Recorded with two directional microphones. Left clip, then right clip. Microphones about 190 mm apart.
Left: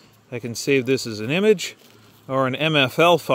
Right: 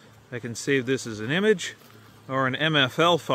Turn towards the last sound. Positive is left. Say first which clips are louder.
# left 4 dB
turn(degrees=45)  # may be behind; listen again after turning